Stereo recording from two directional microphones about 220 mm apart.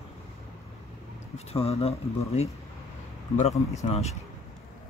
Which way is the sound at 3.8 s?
30° left (ahead or behind).